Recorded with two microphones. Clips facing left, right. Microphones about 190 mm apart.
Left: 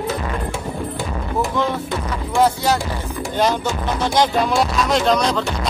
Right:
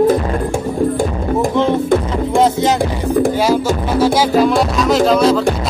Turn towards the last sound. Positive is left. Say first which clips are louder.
# right 6 dB
turn(degrees=-5)  # may be behind; listen again after turning